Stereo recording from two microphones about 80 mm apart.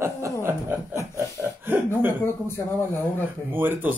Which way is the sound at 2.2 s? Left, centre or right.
Left.